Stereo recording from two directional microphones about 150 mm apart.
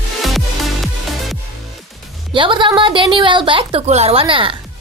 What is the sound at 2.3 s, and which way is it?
A woman's voice, 35° right (ahead or behind).